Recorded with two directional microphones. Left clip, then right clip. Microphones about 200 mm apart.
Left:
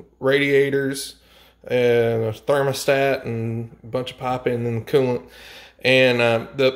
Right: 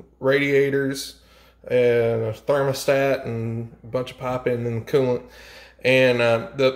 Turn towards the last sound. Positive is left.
turn(degrees=25)  # may be behind; listen again after turning